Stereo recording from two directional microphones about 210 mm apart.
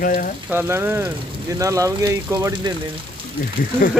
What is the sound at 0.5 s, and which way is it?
Speech, 10° right (ahead or behind).